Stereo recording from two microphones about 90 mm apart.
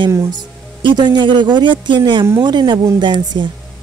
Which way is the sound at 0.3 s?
55° right (ahead or behind).